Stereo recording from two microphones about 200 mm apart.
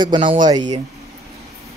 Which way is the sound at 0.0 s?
25° right (ahead or behind).